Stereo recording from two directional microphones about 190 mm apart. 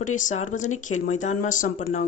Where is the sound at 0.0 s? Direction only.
40° left (ahead or behind).